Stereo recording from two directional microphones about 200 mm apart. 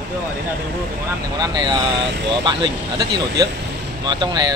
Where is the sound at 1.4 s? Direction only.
20° right (ahead or behind).